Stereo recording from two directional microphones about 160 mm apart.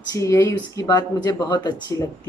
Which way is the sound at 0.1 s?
20° left (ahead or behind).